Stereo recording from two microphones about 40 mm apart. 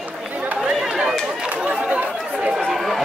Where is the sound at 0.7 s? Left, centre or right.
Centre.